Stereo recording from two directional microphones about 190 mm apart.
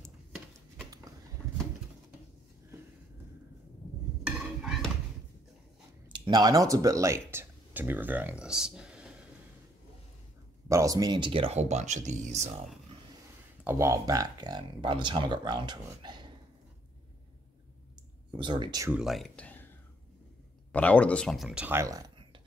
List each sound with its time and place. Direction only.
4.6 s a sound: centre (ahead or behind)
6.1 s speech: 25° right (ahead or behind); by 9.1 s 5° right (ahead or behind)
10.7 s speech: 15° right (ahead or behind); by 12.4 s 35° right (ahead or behind)
13.7 s speech: 15° right (ahead or behind)
18.3 s speech: 25° right (ahead or behind)
18.9 s speech: 5° right (ahead or behind)
20.7 s speech: 5° left (ahead or behind); by 22.1 s 20° right (ahead or behind)